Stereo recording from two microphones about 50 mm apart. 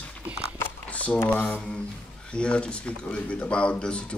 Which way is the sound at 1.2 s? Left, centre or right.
Left.